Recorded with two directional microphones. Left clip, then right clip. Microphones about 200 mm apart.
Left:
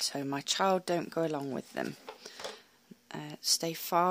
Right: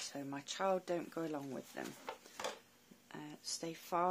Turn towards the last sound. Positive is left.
turn(degrees=60)  # may be behind; listen again after turning